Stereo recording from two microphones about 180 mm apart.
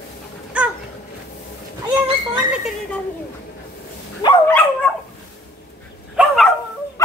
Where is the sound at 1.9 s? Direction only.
5° right (ahead or behind).